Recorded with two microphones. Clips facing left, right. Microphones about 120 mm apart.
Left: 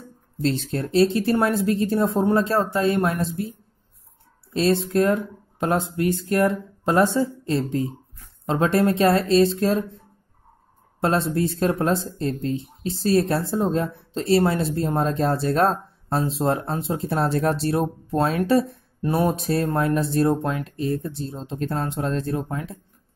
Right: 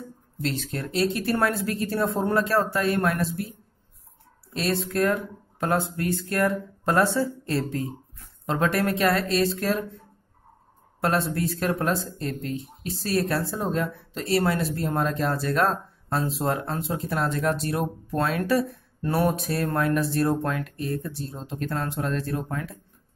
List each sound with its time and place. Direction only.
0.4 s speech: 30° left (ahead or behind)
4.6 s speech: 25° left (ahead or behind)
11.0 s speech: 25° left (ahead or behind)